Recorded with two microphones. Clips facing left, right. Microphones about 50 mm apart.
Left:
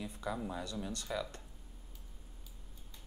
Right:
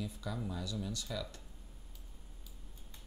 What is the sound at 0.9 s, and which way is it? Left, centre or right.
Speech, left.